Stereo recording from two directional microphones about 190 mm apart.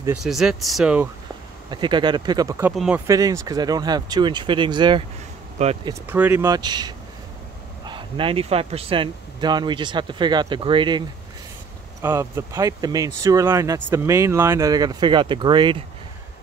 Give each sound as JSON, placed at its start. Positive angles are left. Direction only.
{"t": 0.2, "sound": "speech", "side_deg": 0}
{"t": 1.7, "sound": "speech", "side_deg": -25}
{"t": 2.7, "sound": "speech", "side_deg": 0}
{"t": 3.1, "sound": "speech", "side_deg": -20}
{"t": 5.6, "sound": "speech", "side_deg": -35}
{"t": 6.0, "sound": "speech", "side_deg": -10}